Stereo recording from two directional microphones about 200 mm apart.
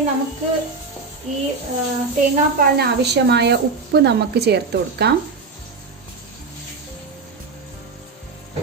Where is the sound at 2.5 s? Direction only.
50° right (ahead or behind).